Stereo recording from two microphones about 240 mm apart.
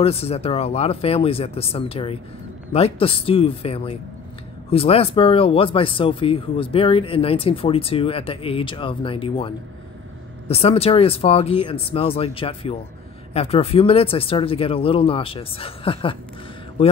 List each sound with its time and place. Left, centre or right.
0.0 s speech: left
10.5 s speech: left